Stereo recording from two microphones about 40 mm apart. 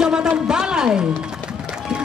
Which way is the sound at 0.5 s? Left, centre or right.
Centre.